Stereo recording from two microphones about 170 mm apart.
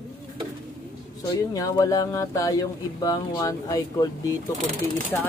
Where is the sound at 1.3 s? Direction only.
20° left (ahead or behind).